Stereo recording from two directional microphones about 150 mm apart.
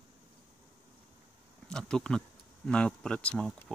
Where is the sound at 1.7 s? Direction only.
5° left (ahead or behind).